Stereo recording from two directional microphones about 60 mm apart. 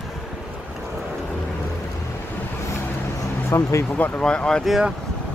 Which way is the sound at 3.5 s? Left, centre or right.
Left.